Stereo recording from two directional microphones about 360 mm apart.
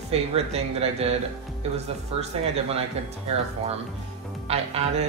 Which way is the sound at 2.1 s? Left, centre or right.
Centre.